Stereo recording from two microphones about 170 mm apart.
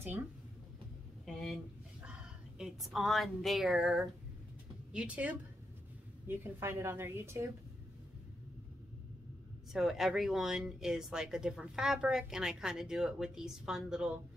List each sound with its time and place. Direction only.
1.2 s a sound: centre (ahead or behind)
2.0 s a woman's voice: 5° right (ahead or behind)
9.7 s speech: centre (ahead or behind)